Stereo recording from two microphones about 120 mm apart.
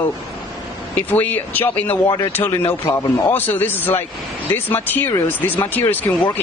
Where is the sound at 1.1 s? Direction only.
15° left (ahead or behind).